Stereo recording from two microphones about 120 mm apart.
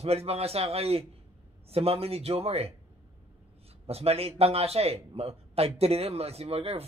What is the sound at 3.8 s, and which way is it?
A man's voice, 55° right (ahead or behind).